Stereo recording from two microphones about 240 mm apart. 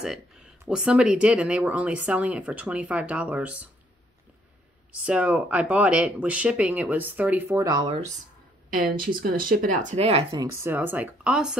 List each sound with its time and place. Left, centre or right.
0.0 s speech: centre
5.0 s speech: centre
8.9 s speech: right
10.3 s speech: centre